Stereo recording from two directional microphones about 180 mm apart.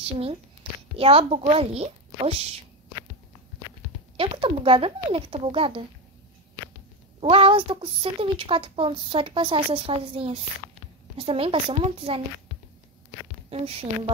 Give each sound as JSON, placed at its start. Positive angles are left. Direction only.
{"t": 0.0, "sound": "speech", "side_deg": -30}
{"t": 4.2, "sound": "speech", "side_deg": -30}
{"t": 7.2, "sound": "speech", "side_deg": -30}
{"t": 13.5, "sound": "speech", "side_deg": -35}